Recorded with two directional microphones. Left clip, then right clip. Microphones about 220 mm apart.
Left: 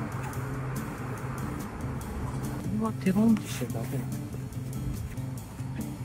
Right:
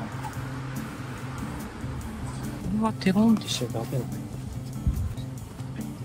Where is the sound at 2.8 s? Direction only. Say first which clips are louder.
Right 5 dB; 45° right (ahead or behind).